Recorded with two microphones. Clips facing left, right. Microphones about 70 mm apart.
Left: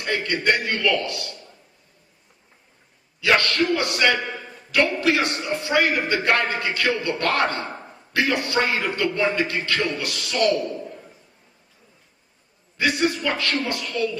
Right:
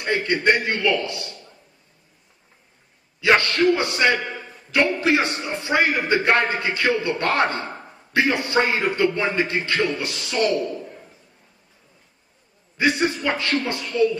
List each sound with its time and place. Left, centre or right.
0.0 s a man's voice: right
3.2 s a man's voice: right
12.7 s a man's voice: right